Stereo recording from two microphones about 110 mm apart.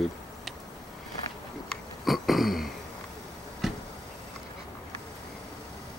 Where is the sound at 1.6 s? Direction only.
Centre (ahead or behind).